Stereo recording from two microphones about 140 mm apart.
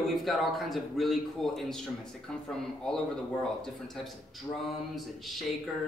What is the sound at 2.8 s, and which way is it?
Speech, 5° left (ahead or behind).